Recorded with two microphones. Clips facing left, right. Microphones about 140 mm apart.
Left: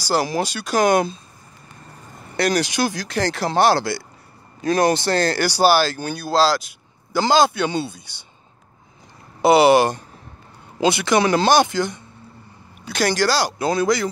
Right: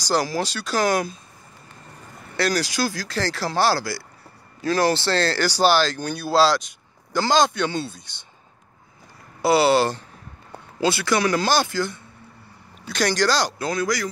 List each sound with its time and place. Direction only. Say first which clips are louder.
0.0 s speech: left 2 dB; 5° left (ahead or behind); by 1.2 s 25° left (ahead or behind)
2.3 s speech: left 3 dB; 20° left (ahead or behind)
9.4 s speech: left 4 dB; 20° left (ahead or behind)
13.6 s speech: left 5 dB; 25° left (ahead or behind)